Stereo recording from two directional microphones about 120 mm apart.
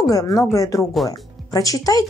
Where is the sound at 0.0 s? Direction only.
30° left (ahead or behind).